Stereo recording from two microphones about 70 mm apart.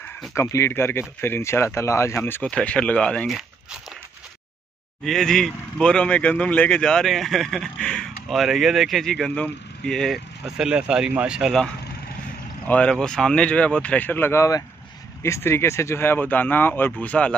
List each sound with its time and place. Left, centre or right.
0.3 s speech: left
2.4 s speech: centre
3.3 s walk: centre
5.0 s speech: centre
10.7 s speech: centre
12.6 s speech: left
13.0 s speech: centre; by 14.4 s left
15.2 s speech: left